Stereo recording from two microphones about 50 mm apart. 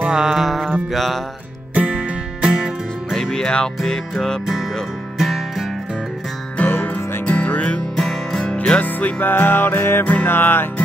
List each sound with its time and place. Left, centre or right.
0.1 s music: centre
1.8 s music: right
3.1 s music: centre
5.2 s music: centre
6.6 s music: left
7.2 s music: left
7.9 s music: centre
8.5 s music: left